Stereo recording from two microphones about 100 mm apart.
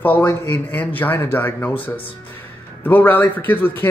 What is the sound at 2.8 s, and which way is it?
Speech, 20° left (ahead or behind).